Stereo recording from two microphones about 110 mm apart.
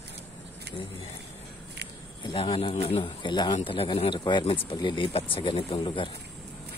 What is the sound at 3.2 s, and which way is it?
Speech, 40° left (ahead or behind).